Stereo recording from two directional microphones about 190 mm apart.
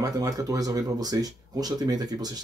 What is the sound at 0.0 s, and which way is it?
Speech, 20° right (ahead or behind).